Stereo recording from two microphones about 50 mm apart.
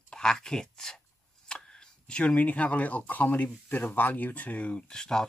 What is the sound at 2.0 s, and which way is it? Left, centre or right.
Speech, left.